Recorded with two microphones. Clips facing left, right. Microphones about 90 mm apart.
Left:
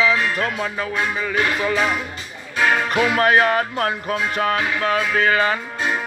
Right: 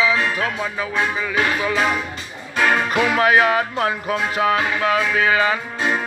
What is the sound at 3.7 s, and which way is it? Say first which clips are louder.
Music: right 1 dB; 25° right (ahead or behind).